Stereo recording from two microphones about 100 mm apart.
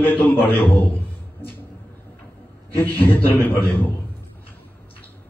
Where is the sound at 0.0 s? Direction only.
20° left (ahead or behind).